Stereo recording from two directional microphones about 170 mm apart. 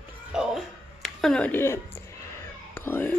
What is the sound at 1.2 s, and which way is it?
A woman's voice, 5° left (ahead or behind).